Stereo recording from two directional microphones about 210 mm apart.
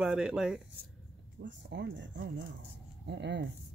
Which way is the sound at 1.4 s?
55° right (ahead or behind).